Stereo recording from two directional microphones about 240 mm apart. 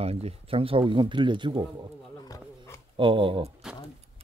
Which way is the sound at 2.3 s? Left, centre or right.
Centre.